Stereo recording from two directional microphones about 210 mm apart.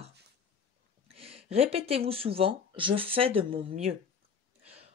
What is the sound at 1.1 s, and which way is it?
Speech, 30° right (ahead or behind).